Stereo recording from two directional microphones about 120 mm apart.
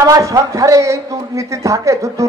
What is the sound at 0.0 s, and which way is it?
A man's voice, 30° right (ahead or behind).